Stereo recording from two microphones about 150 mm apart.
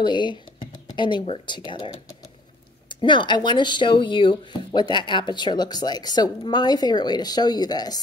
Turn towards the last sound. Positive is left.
turn(degrees=25)  # may be behind; listen again after turning